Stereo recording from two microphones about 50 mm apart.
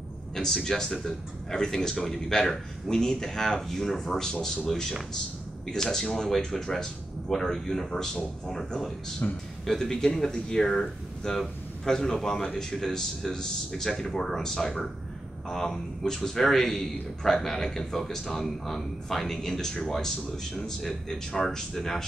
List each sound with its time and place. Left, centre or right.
0.4 s a man's voice: centre
9.2 s a man's voice: left
9.7 s a man's voice: centre